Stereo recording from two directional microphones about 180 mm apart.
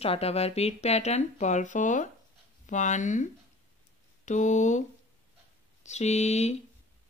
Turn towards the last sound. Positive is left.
turn(degrees=35)  # may be behind; listen again after turning